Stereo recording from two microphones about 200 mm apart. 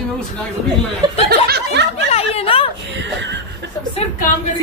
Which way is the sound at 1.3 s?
55° right (ahead or behind).